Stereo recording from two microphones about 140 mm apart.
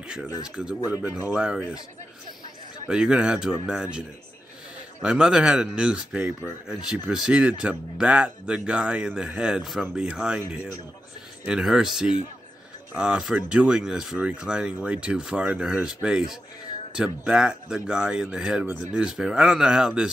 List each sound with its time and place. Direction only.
0.0 s speech: 5° right (ahead or behind)
2.9 s speech: 5° right (ahead or behind)
5.0 s speech: 5° right (ahead or behind)
11.4 s speech: 5° right (ahead or behind)